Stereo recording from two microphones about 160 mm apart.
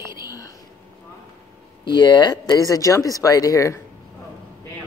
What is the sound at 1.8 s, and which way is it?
Speech, 30° left (ahead or behind).